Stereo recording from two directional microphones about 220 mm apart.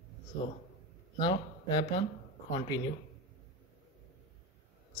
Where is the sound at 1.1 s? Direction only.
20° left (ahead or behind).